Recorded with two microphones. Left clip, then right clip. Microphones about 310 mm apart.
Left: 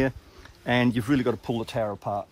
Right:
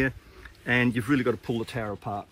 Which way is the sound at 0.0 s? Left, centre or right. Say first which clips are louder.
Left 1 dB; left.